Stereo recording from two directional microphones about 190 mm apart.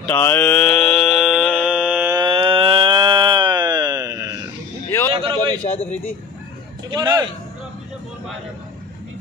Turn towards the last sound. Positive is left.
turn(degrees=-20)  # may be behind; listen again after turning